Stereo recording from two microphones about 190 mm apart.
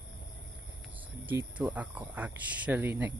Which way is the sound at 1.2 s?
10° right (ahead or behind).